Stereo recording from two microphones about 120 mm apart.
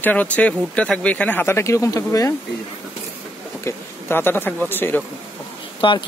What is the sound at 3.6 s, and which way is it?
Speech, 20° left (ahead or behind).